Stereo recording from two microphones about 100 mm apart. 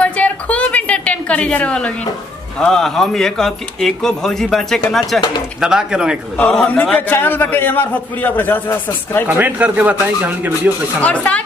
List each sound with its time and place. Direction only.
0.0 s a sound: 15° left (ahead or behind)
2.6 s speech: 5° left (ahead or behind)
6.3 s a man's voice: 10° left (ahead or behind)
9.3 s speech: 15° right (ahead or behind)
11.0 s speech: 15° left (ahead or behind)